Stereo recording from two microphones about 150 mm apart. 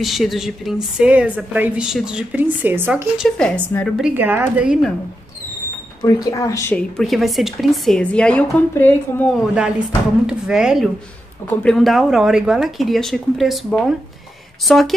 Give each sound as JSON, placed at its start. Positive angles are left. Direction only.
{"t": 0.0, "sound": "a woman's voice", "side_deg": 0}
{"t": 3.2, "sound": "speech", "side_deg": 5}
{"t": 4.0, "sound": "a woman's voice", "side_deg": -15}
{"t": 6.2, "sound": "speech", "side_deg": 20}
{"t": 7.0, "sound": "a woman's voice", "side_deg": 0}
{"t": 10.2, "sound": "a woman's voice", "side_deg": -5}